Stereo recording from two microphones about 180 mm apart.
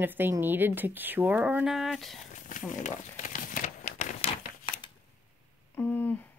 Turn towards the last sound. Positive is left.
turn(degrees=10)  # may be behind; listen again after turning